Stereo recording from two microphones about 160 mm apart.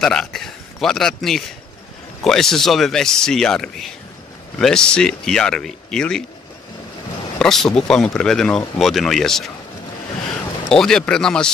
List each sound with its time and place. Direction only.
0.0 s a man's voice: 5° left (ahead or behind)
7.3 s speech: centre (ahead or behind)
10.7 s speech: 5° left (ahead or behind)